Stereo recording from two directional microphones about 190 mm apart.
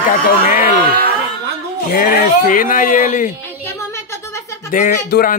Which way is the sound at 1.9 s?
50° left (ahead or behind).